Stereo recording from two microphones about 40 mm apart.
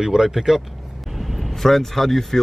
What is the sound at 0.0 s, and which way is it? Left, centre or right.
Speech, centre.